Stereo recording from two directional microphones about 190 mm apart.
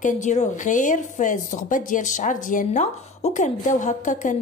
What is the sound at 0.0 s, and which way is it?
A woman's voice, 40° left (ahead or behind).